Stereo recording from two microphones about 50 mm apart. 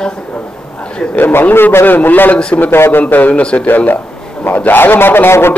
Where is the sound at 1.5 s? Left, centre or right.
Left.